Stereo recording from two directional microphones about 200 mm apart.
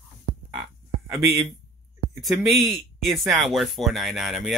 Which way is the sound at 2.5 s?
Centre (ahead or behind).